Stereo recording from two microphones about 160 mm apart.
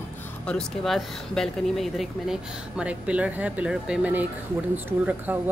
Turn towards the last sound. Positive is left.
turn(degrees=-10)  # may be behind; listen again after turning